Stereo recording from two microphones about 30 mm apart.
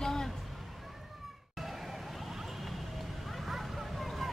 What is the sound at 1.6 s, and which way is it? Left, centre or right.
Vehicle, centre.